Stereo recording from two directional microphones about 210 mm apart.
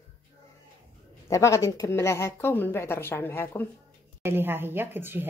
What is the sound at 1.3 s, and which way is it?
A woman's voice, 15° left (ahead or behind).